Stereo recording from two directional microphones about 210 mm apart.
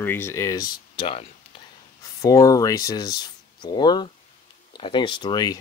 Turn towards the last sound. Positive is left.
turn(degrees=20)  # may be behind; listen again after turning